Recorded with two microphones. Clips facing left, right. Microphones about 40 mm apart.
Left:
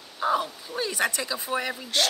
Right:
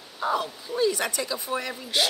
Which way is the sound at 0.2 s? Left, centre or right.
Centre.